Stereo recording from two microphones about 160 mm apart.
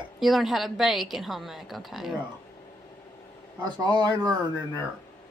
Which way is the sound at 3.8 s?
25° right (ahead or behind).